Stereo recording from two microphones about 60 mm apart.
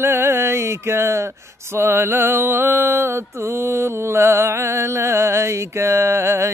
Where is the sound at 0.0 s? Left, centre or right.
Right.